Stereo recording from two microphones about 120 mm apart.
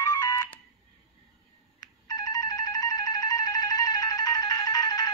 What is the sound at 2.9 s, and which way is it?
Music, 35° left (ahead or behind).